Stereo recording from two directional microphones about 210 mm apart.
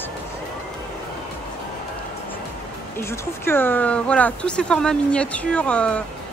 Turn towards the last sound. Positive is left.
turn(degrees=5)  # may be behind; listen again after turning